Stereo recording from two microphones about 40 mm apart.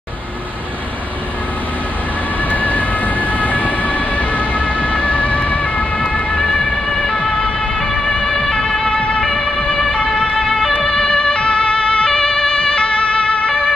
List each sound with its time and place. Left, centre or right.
2.5 s music: left
6.4 s emergency vehicle: centre
8.2 s ambulance: centre
9.2 s ambulance: centre
9.9 s emergency vehicle: left